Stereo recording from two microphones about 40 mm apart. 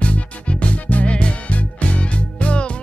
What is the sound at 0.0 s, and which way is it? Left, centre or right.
Music, left.